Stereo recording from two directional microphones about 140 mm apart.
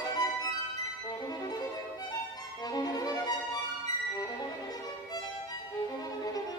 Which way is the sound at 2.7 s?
30° left (ahead or behind).